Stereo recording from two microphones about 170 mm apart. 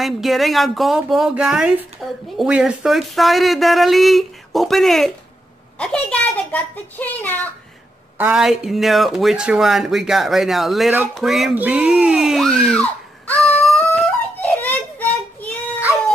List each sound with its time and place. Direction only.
0.0 s a child's voice: centre (ahead or behind)
8.2 s speech: 5° right (ahead or behind)